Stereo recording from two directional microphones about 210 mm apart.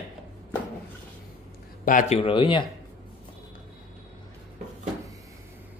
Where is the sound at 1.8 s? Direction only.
40° left (ahead or behind).